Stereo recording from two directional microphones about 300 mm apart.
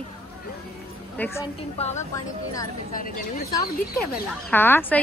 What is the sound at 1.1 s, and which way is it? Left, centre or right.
Speech, centre.